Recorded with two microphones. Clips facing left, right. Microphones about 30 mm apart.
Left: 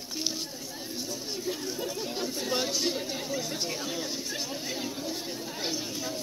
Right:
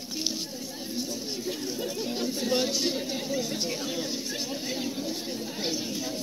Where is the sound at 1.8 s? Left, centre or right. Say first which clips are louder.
Right 3 dB; right.